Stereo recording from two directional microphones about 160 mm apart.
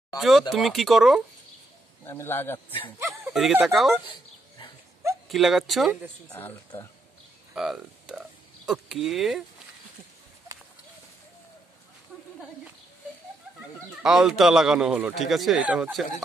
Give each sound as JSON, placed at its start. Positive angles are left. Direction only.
{"t": 0.2, "sound": "speech", "side_deg": 0}
{"t": 2.0, "sound": "speech", "side_deg": 15}
{"t": 3.0, "sound": "bow-wow", "side_deg": -15}
{"t": 3.6, "sound": "speech", "side_deg": 0}
{"t": 5.3, "sound": "speech", "side_deg": 0}
{"t": 6.3, "sound": "speech", "side_deg": 15}
{"t": 7.5, "sound": "speech", "side_deg": 0}
{"t": 14.0, "sound": "speech", "side_deg": -5}